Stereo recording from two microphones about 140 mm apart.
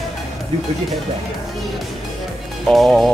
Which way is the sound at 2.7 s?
Centre (ahead or behind).